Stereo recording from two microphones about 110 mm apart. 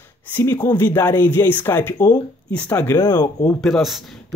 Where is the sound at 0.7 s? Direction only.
20° left (ahead or behind).